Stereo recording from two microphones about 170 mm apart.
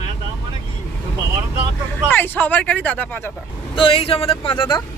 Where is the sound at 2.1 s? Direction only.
10° left (ahead or behind).